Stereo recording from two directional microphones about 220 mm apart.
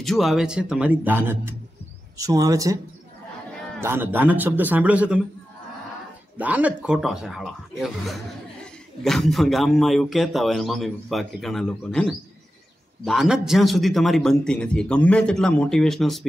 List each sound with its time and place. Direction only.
0.0 s a man's voice: centre (ahead or behind); by 2.8 s 15° right (ahead or behind)
3.8 s a man's voice: 10° right (ahead or behind)
6.3 s a man's voice: 5° right (ahead or behind)